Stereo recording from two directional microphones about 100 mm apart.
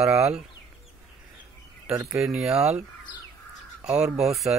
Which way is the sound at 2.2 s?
5° right (ahead or behind).